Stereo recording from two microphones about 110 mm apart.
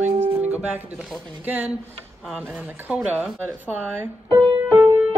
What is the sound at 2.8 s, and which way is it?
Speech, 15° right (ahead or behind).